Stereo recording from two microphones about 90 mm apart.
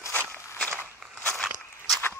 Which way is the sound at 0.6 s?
20° left (ahead or behind).